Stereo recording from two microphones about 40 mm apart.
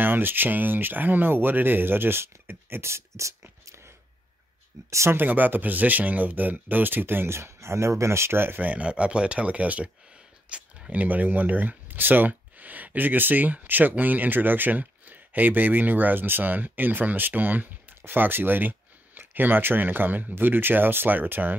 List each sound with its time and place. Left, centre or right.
0.0 s speech: right
5.1 s speech: right
8.5 s speech: right
8.8 s speech: right
10.9 s speech: right